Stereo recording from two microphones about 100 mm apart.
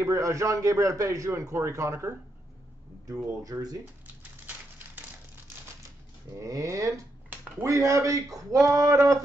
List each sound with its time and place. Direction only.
0.0 s a man's voice: 30° right (ahead or behind)
4.5 s typewriter: 15° right (ahead or behind)
6.3 s a man's voice: 35° right (ahead or behind)